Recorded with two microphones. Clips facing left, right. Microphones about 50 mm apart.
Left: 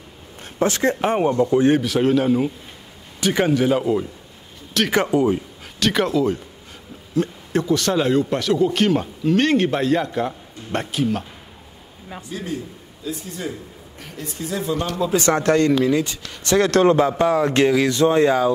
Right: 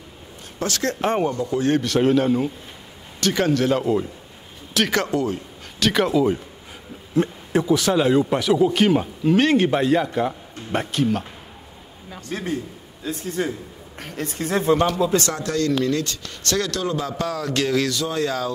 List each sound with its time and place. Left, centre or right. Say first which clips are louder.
0.6 s speech: left 5 dB; left
1.8 s speech: even; centre
5.8 s speech: even; centre
7.2 s speech: right 1 dB; right
7.5 s speech: right 1 dB; centre
12.3 s speech: right 2 dB; right
15.3 s speech: left 6 dB; left
15.8 s speech: left 3 dB; centre
16.7 s speech: left 10 dB; left